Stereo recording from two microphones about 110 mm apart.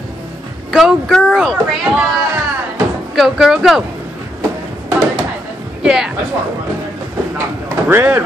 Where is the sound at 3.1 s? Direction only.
Centre (ahead or behind).